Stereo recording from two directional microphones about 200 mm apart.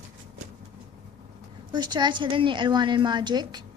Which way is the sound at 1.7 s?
20° right (ahead or behind).